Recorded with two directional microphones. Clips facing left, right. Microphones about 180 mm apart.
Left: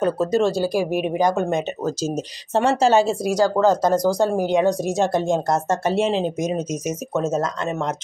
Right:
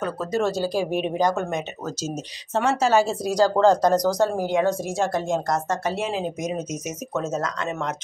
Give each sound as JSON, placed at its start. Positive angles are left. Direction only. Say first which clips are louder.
{"t": 0.0, "sound": "speech", "louder": "left 6 dB", "side_deg": 25}
{"t": 0.5, "sound": "speech", "louder": "left 3 dB", "side_deg": 10}
{"t": 1.5, "sound": "speech", "louder": "left 6 dB", "side_deg": 30}
{"t": 3.3, "sound": "speech", "louder": "even", "side_deg": 10}